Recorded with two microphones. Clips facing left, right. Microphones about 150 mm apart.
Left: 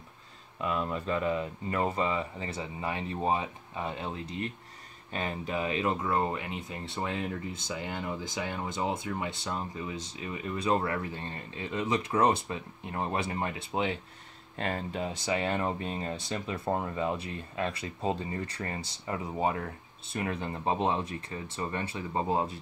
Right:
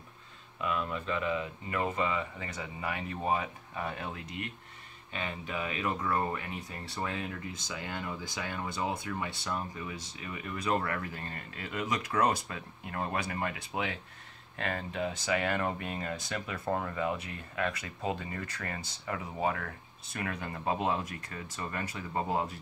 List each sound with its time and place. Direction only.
0.6 s speech: 35° left (ahead or behind)